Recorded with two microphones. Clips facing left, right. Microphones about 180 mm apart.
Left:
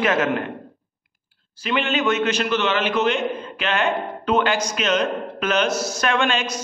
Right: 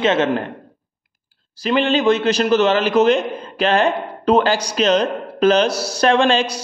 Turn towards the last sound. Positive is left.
turn(degrees=-35)  # may be behind; listen again after turning